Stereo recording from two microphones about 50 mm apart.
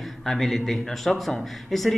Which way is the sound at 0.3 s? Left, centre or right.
Centre.